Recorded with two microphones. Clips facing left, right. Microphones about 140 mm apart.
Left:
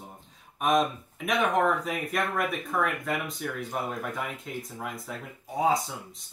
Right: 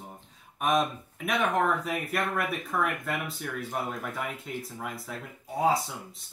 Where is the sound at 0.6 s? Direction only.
Centre (ahead or behind).